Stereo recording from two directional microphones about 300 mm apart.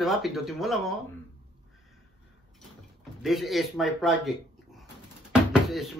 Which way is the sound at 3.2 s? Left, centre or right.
Centre.